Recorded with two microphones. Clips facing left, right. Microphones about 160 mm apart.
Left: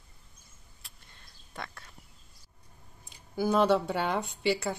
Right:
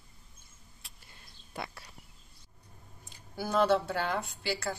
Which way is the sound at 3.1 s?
15° left (ahead or behind).